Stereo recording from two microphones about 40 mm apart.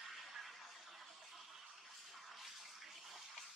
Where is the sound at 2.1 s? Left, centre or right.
Centre.